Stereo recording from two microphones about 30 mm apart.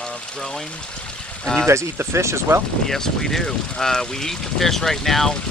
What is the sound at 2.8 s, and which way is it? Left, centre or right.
Speech, centre.